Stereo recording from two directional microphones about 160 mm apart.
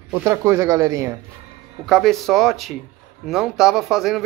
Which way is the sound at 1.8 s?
Centre (ahead or behind).